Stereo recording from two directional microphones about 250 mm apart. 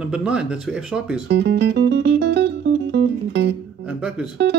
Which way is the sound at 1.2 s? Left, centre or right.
Right.